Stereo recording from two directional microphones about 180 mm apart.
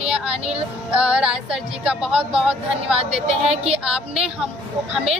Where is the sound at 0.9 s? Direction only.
5° right (ahead or behind).